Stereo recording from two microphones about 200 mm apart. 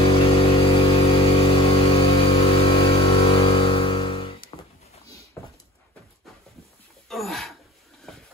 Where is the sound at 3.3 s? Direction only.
25° left (ahead or behind).